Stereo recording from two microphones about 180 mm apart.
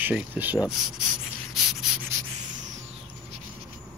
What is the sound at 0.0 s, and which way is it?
Speech, 10° right (ahead or behind).